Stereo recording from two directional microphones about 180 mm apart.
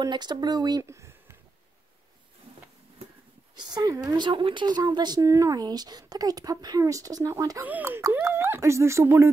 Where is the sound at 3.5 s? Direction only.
20° right (ahead or behind).